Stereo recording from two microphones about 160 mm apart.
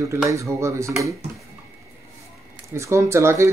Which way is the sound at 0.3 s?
20° right (ahead or behind).